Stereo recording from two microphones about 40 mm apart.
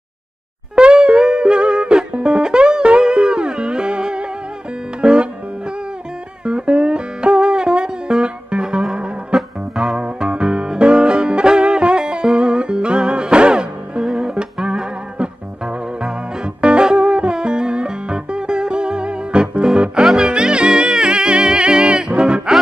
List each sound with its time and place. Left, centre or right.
0.7 s music: right
6.4 s music: right
9.3 s music: centre
9.9 s music: right
14.0 s music: centre
14.7 s music: right
16.6 s music: right